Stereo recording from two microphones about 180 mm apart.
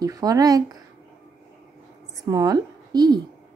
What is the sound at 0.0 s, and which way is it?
Speech, 20° right (ahead or behind).